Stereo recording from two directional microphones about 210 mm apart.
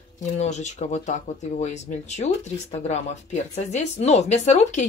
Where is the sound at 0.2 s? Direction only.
35° left (ahead or behind).